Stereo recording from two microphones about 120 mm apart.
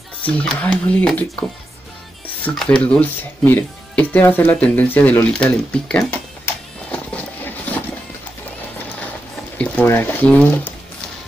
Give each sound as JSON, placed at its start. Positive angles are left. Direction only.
{"t": 0.2, "sound": "speech", "side_deg": 10}
{"t": 2.5, "sound": "speech", "side_deg": 5}
{"t": 6.9, "sound": "horse", "side_deg": 10}
{"t": 9.6, "sound": "speech", "side_deg": 15}